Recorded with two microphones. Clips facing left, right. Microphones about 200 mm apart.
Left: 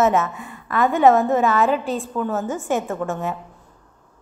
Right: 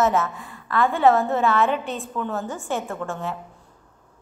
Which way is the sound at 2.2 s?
5° left (ahead or behind).